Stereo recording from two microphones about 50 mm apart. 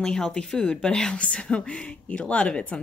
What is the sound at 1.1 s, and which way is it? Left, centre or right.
Speech, left.